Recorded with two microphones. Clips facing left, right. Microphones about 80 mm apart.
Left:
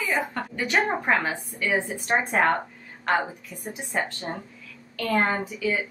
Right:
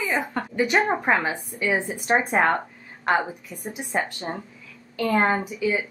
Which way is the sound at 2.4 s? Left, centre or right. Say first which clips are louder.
Right 1 dB; centre.